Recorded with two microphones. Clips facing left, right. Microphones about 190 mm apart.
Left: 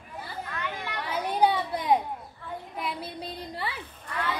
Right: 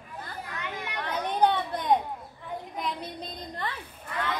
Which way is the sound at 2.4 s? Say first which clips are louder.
Right 1 dB; 15° right (ahead or behind).